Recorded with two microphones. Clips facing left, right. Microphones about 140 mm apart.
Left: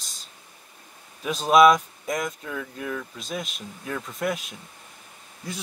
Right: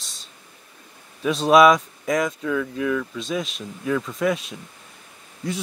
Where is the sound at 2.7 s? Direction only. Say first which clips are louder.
Right 8 dB; 80° right.